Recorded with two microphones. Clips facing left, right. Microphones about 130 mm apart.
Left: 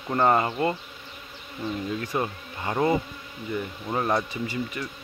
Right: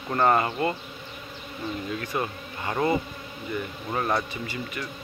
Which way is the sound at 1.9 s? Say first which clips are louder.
Left 1 dB; 25° left (ahead or behind).